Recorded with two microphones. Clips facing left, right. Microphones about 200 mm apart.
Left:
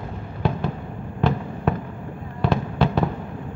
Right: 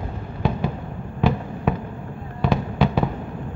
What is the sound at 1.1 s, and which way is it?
Fireworks, 5° right (ahead or behind).